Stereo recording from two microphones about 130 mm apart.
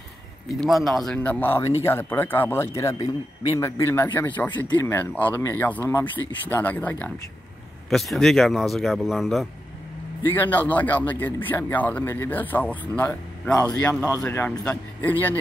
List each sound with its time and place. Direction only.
0.6 s speech: centre (ahead or behind)
10.2 s speech: 15° left (ahead or behind)